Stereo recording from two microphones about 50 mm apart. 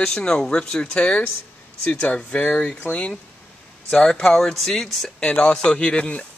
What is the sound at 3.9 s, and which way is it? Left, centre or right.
Speech, centre.